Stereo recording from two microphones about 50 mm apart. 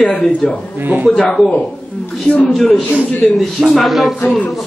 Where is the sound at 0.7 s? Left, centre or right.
Right.